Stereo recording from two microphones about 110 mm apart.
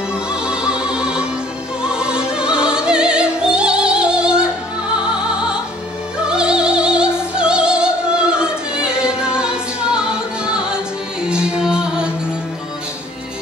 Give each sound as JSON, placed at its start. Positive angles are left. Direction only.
{"t": 0.1, "sound": "music", "side_deg": -10}
{"t": 6.2, "sound": "opera", "side_deg": -10}
{"t": 7.2, "sound": "music", "side_deg": -10}